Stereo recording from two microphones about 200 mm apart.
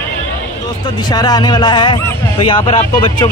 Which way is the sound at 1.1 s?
20° left (ahead or behind).